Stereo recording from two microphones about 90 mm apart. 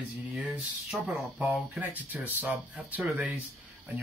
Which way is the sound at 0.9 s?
Centre (ahead or behind).